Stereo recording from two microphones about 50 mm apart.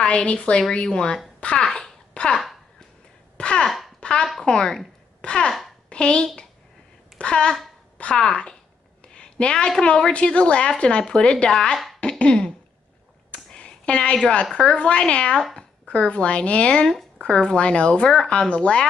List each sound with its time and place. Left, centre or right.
0.0 s speech: left
1.4 s babbling: centre
3.3 s a sound: centre
4.5 s speech: centre
5.2 s babbling: centre
5.9 s a woman's voice: centre
7.2 s a sound: centre
8.2 s a woman's voice: centre
11.5 s speech: centre
12.0 s a sound: left
14.6 s speech: centre